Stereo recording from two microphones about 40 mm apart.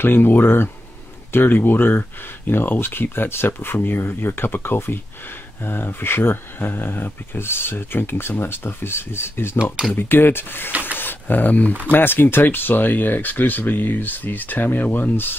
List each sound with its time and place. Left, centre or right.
0.0 s speech: left
1.3 s speech: left
4.0 s speech: left
9.9 s speech: left
10.7 s a sound: right
11.0 s speech: left
12.0 s speech: left